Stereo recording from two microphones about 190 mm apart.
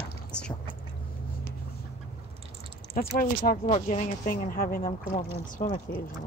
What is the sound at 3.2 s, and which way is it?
Speech, 45° left (ahead or behind).